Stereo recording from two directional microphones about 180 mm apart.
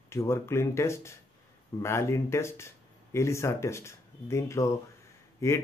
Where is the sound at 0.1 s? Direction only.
15° left (ahead or behind).